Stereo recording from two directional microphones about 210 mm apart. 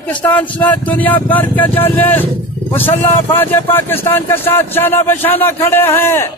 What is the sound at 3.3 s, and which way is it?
A man's voice, 10° left (ahead or behind).